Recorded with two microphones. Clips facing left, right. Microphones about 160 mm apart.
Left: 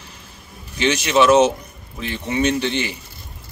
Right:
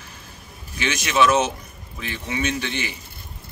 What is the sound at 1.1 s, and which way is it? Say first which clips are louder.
Speech: left 5 dB; 25° left (ahead or behind).